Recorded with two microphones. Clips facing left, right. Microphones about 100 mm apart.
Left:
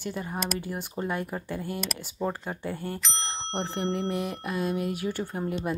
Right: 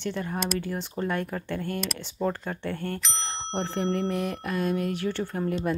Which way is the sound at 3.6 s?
10° left (ahead or behind).